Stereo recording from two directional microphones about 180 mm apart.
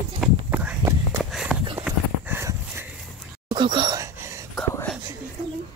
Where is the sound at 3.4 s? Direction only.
25° right (ahead or behind).